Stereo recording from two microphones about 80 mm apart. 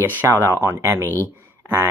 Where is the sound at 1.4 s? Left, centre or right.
Right.